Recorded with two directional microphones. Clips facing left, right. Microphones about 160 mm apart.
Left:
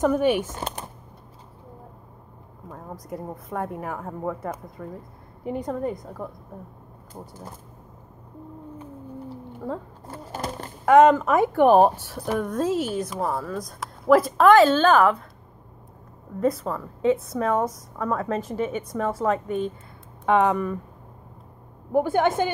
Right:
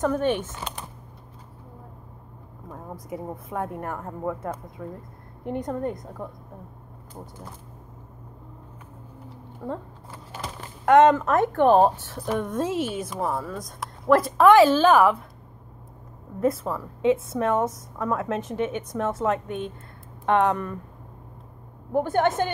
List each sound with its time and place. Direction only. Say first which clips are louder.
0.0 s a woman's voice: left 3 dB; 10° left (ahead or behind)
0.6 s typing: left 4 dB; 45° left (ahead or behind)
2.7 s a woman's voice: even; 5° right (ahead or behind)
9.6 s a woman's voice: left 1 dB; 5° right (ahead or behind)
10.1 s a sound: left 5 dB; 45° left (ahead or behind)
10.9 s a woman's voice: left 1 dB; 5° left (ahead or behind)
16.3 s a woman's voice: even; 5° right (ahead or behind)
21.9 s a woman's voice: left 1 dB; 10° left (ahead or behind)